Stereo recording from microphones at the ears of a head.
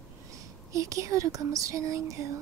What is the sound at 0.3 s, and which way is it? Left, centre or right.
Speech, right.